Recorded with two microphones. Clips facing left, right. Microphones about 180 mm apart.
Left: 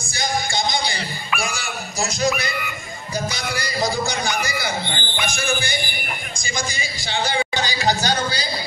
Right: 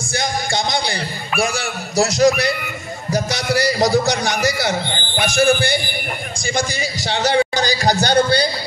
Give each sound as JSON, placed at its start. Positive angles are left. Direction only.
{"t": 0.0, "sound": "music", "side_deg": -70}
{"t": 1.4, "sound": "speech", "side_deg": -70}
{"t": 3.1, "sound": "music", "side_deg": -75}
{"t": 5.2, "sound": "speech", "side_deg": -70}
{"t": 7.5, "sound": "a sound", "side_deg": -40}
{"t": 8.0, "sound": "a man's voice", "side_deg": -65}